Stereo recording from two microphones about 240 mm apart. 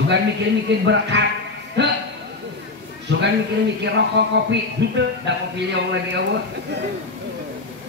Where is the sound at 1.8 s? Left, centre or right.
Right.